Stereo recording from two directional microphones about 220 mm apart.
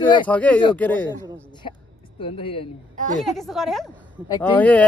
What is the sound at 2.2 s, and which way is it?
Speech, 25° left (ahead or behind).